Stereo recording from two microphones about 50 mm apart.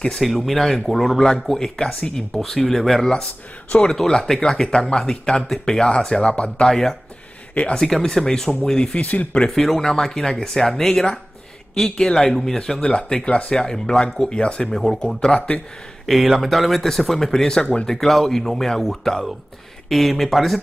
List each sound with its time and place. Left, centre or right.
0.2 s speech: centre
6.7 s speech: centre
9.0 s speech: left
9.5 s speech: centre
14.8 s speech: centre
15.1 s speech: centre
16.1 s speech: centre